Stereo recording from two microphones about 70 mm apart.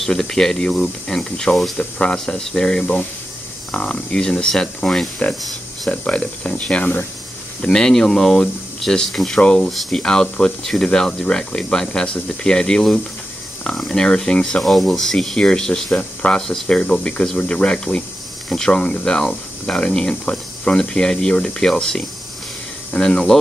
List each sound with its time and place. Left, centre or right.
0.0 s speech: centre; by 7.1 s left
7.6 s speech: centre